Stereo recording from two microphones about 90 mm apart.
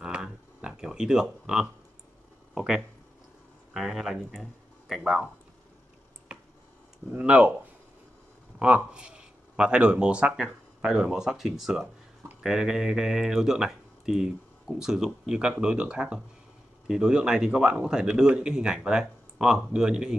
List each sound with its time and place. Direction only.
0.0 s a sound: 10° right (ahead or behind)
2.5 s speech: 5° right (ahead or behind)
7.2 s speech: 15° right (ahead or behind)
8.5 s speech: 15° right (ahead or behind)